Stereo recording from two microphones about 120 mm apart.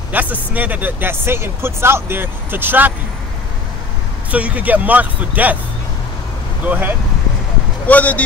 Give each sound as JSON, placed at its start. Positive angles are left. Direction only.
{"t": 0.1, "sound": "speech", "side_deg": -15}
{"t": 4.3, "sound": "speech", "side_deg": -10}
{"t": 6.6, "sound": "speech", "side_deg": -15}
{"t": 7.8, "sound": "speech", "side_deg": 10}